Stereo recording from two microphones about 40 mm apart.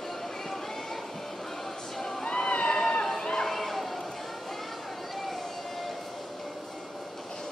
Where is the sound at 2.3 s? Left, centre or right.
Centre.